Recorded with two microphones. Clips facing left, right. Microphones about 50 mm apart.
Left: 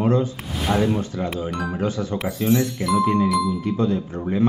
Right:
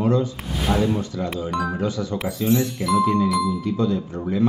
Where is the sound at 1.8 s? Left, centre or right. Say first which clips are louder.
Left 1 dB; left.